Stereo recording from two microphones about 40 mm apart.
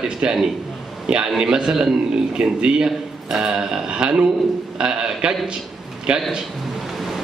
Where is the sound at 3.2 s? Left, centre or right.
Centre.